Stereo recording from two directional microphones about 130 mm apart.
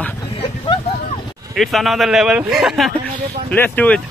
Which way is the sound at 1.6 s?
Centre (ahead or behind).